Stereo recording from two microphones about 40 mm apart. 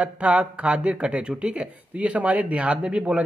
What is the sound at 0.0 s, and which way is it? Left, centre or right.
Speech, right.